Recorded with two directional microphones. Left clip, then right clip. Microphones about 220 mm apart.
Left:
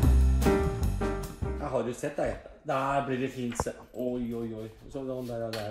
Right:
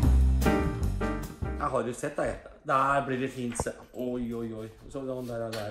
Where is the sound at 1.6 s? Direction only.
15° right (ahead or behind).